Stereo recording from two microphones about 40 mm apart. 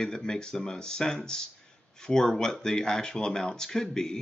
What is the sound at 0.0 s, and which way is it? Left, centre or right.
Speech, centre.